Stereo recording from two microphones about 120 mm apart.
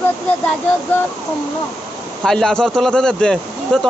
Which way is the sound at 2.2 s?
5° left (ahead or behind).